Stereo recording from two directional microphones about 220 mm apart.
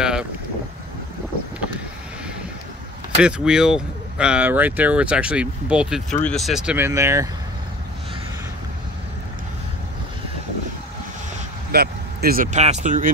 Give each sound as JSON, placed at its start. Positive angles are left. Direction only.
{"t": 0.0, "sound": "boat", "side_deg": -5}
{"t": 3.2, "sound": "speech", "side_deg": -5}
{"t": 11.7, "sound": "speech", "side_deg": -45}